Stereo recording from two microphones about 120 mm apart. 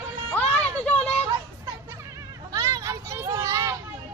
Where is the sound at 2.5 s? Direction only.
30° right (ahead or behind).